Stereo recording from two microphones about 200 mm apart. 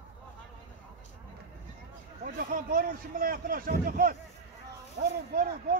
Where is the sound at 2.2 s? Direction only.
45° right (ahead or behind).